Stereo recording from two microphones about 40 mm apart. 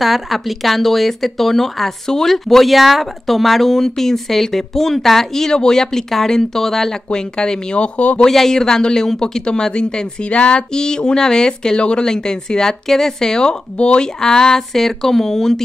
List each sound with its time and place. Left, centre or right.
0.0 s speech: centre
7.1 s speech: centre
8.2 s speech: centre